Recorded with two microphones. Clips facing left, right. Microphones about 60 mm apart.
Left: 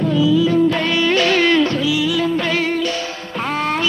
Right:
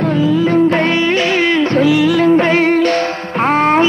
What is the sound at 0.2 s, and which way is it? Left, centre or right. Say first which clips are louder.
Music: right 2 dB; right.